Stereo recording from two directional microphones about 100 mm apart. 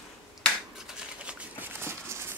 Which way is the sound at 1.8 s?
25° right (ahead or behind).